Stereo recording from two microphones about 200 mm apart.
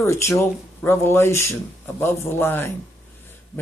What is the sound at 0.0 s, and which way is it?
Speech, 15° left (ahead or behind).